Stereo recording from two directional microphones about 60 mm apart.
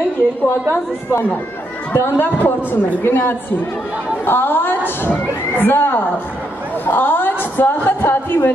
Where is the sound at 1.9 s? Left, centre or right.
Left.